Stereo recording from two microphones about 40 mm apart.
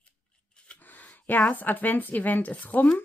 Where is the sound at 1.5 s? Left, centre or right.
Left.